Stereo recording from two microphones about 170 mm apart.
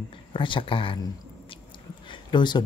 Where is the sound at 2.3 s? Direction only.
25° left (ahead or behind).